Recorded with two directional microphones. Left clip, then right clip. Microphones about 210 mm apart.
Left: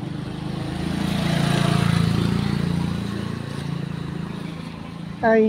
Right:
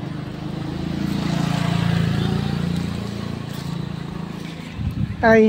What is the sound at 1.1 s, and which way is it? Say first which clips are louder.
Vehicle: left 2 dB; 40° left (ahead or behind).